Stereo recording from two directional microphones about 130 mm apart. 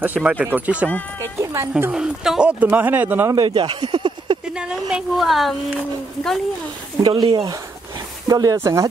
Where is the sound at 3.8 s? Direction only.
35° right (ahead or behind).